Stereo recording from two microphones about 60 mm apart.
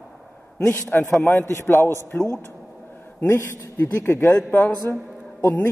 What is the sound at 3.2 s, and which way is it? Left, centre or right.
Speech, left.